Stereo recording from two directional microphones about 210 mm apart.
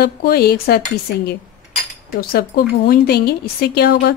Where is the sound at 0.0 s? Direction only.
45° left (ahead or behind).